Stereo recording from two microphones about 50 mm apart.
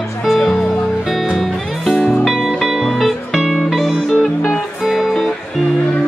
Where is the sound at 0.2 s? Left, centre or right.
Centre.